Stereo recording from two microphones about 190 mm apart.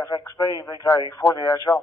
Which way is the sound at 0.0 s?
15° left (ahead or behind).